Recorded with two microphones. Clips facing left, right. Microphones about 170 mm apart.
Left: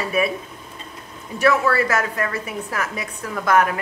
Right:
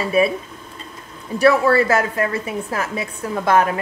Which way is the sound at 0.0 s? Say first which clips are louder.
Right 4 dB; 30° right (ahead or behind).